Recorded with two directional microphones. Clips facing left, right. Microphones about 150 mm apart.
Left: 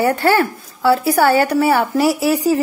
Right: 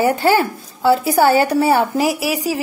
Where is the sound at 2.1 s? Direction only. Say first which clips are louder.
Left 5 dB; 90° right.